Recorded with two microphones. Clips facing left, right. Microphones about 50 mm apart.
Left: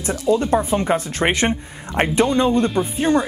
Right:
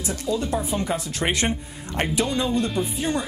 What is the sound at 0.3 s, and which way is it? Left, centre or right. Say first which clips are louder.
A woman's voice: left 8 dB; left.